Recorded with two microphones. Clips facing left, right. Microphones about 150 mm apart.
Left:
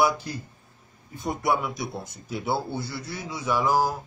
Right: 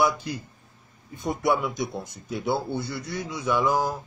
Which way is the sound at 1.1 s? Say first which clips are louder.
Right 1 dB; centre (ahead or behind).